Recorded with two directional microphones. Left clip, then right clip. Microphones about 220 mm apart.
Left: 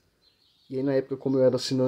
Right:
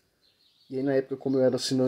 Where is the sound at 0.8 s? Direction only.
35° right (ahead or behind).